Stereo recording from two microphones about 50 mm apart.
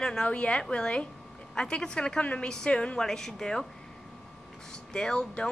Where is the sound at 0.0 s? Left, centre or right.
Centre.